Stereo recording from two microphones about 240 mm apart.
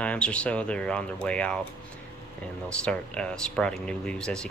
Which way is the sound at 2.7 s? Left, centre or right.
Centre.